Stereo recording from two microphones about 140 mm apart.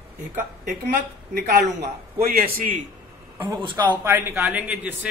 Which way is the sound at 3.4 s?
35° right (ahead or behind).